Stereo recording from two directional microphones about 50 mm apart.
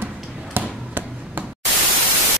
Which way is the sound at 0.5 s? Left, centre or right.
Right.